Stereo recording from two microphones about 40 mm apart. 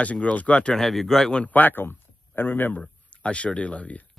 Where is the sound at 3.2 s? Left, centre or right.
Left.